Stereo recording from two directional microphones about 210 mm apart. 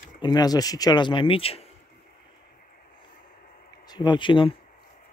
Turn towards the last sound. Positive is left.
turn(degrees=25)  # may be behind; listen again after turning